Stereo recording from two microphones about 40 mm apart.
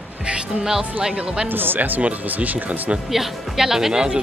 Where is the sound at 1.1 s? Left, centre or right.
Right.